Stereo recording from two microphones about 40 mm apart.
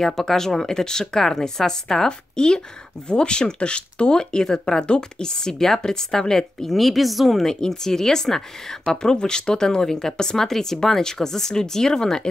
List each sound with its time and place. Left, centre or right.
0.0 s speech: centre
6.8 s speech: centre
7.4 s speech: centre